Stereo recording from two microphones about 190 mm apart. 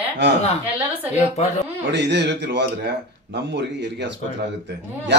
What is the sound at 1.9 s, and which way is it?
Speech, 65° right (ahead or behind).